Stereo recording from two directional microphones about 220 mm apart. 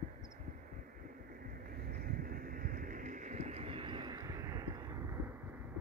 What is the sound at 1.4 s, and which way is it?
Vehicle, 40° right (ahead or behind).